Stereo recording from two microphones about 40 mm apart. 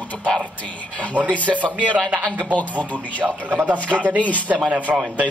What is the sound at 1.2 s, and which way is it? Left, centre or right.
Speech, right.